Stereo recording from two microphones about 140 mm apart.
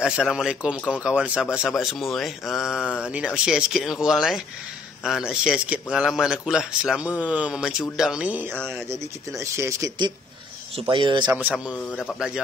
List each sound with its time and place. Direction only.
0.0 s a man's voice: 5° right (ahead or behind)
9.4 s a man's voice: 20° right (ahead or behind); by 11.2 s 35° right (ahead or behind)
11.2 s a man's voice: 10° right (ahead or behind)